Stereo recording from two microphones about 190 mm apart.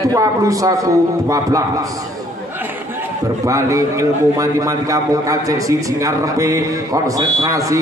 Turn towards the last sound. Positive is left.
turn(degrees=-15)  # may be behind; listen again after turning